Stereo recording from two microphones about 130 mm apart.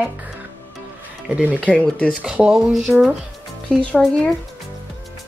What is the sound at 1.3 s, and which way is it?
Speech, 10° right (ahead or behind).